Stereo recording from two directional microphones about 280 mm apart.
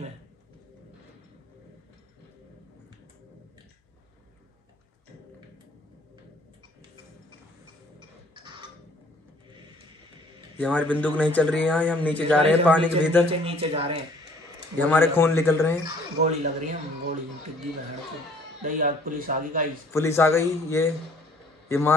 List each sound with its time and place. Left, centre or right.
8.4 s a sound: centre
10.6 s speech: centre
13.3 s speech: centre
14.8 s speech: centre
16.2 s speech: right
18.6 s speech: right
19.9 s a man's voice: centre